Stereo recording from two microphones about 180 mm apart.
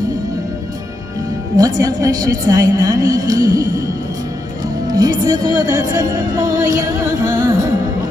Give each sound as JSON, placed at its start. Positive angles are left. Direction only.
{"t": 1.6, "sound": "music", "side_deg": -20}
{"t": 4.8, "sound": "music", "side_deg": -20}